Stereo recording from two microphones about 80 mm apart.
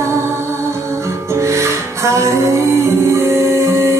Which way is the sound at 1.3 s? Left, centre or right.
Right.